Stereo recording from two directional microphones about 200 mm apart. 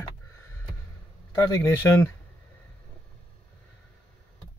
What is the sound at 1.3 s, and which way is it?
Speech, 15° left (ahead or behind).